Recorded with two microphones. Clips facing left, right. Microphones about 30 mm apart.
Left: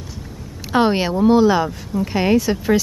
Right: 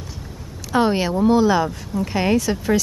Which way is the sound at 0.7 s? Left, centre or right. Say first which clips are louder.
Left 2 dB; left.